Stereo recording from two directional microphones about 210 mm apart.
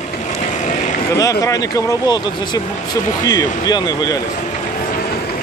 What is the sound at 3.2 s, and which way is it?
Speech, 20° left (ahead or behind).